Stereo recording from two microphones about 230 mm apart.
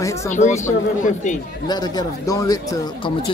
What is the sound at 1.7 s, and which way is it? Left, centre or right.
Speech, centre.